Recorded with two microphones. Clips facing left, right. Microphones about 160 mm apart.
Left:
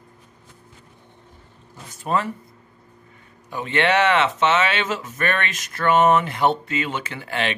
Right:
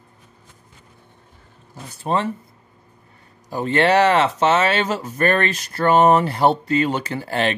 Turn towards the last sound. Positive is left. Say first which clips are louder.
# right 4 dB
turn(degrees=-40)  # may be behind; listen again after turning